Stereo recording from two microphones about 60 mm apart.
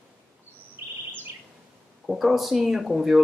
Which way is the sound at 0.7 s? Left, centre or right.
Right.